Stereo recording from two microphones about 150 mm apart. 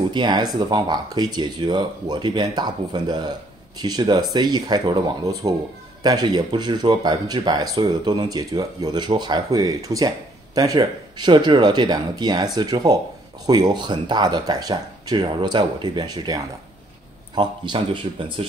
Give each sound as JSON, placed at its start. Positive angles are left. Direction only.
{"t": 0.1, "sound": "speech", "side_deg": -30}
{"t": 17.4, "sound": "speech", "side_deg": -30}